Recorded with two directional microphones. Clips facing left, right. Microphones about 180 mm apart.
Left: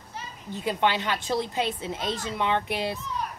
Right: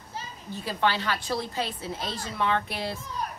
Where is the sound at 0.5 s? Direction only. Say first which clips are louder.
Left 2 dB; 20° left (ahead or behind).